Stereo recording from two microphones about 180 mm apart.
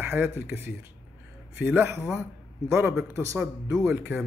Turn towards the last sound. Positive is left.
turn(degrees=-10)  # may be behind; listen again after turning